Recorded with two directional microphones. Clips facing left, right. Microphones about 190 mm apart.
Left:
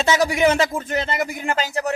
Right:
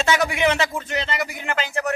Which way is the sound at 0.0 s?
40° left (ahead or behind).